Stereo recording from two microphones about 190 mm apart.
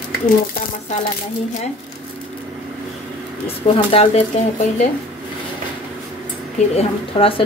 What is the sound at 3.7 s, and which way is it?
Speech, 30° left (ahead or behind).